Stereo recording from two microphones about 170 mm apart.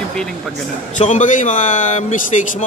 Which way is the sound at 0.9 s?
45° left (ahead or behind).